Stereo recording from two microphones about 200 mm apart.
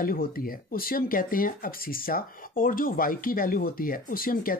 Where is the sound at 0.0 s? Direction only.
45° left (ahead or behind).